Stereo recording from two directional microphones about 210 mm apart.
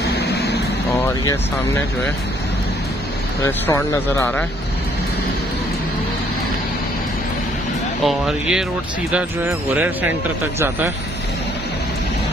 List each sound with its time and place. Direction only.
0.0 s vehicle: 50° left (ahead or behind)
0.9 s speech: 10° left (ahead or behind)
3.4 s speech: 10° left (ahead or behind)
8.0 s speech: centre (ahead or behind)